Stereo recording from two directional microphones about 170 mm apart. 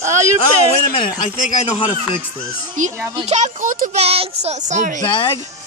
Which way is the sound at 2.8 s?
45° right (ahead or behind).